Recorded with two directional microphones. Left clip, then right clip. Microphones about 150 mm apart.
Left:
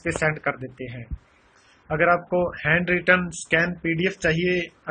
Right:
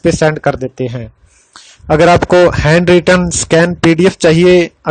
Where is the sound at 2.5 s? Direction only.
90° right.